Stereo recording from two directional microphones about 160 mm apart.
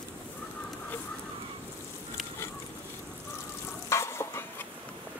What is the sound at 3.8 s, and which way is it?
Stir, 15° left (ahead or behind).